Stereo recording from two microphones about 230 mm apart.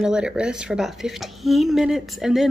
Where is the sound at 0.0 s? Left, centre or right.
Centre.